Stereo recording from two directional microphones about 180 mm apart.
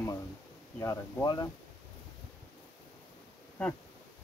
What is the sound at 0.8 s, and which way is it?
Speech, 20° left (ahead or behind).